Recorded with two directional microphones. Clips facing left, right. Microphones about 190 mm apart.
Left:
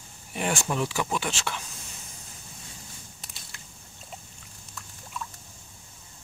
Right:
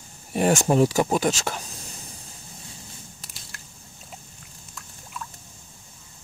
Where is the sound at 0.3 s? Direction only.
40° right (ahead or behind).